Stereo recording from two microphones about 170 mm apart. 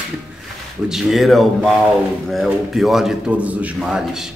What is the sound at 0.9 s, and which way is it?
A man's voice, centre (ahead or behind).